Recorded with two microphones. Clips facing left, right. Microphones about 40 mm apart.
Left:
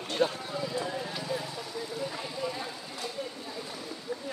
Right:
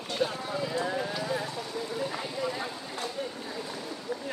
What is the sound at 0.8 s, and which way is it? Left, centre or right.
Speech, right.